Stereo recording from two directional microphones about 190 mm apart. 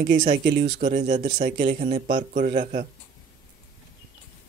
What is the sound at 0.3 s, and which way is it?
Speech, 55° right (ahead or behind).